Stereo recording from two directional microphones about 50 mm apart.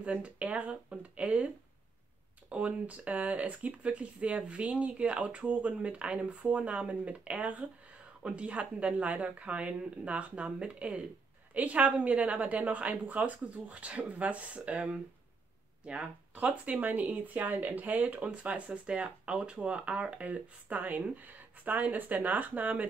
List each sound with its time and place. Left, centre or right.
0.0 s speech: right
2.5 s speech: right